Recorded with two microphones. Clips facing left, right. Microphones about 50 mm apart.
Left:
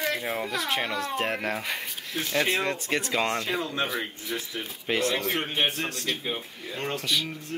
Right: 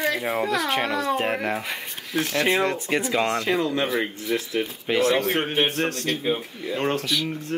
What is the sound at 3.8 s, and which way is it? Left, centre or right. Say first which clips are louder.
Speech: right 7 dB; centre.